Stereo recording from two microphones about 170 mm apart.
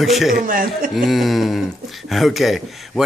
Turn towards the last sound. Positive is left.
turn(degrees=0)  # may be behind; listen again after turning